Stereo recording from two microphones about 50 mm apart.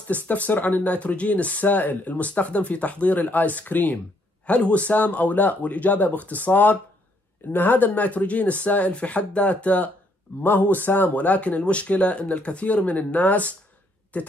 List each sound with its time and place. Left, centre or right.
0.1 s speech: left
10.4 s speech: left